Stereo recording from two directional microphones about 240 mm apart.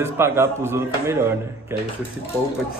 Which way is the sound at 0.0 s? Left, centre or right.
Centre.